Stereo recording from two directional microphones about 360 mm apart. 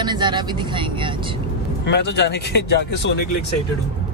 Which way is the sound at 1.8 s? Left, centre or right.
Left.